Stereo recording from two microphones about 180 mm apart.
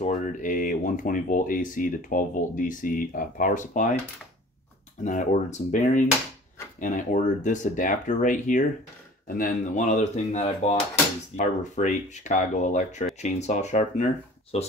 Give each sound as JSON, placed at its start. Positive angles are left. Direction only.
{"t": 0.0, "sound": "speech", "side_deg": 45}
{"t": 5.0, "sound": "speech", "side_deg": 45}